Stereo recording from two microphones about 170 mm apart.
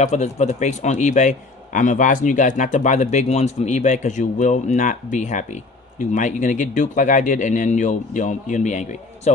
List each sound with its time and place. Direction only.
0.0 s a man's voice: 40° left (ahead or behind)